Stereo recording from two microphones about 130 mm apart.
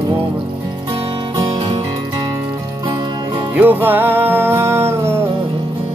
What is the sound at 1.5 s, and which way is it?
Music, 45° right (ahead or behind).